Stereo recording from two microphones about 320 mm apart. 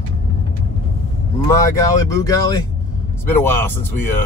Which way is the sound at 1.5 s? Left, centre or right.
Centre.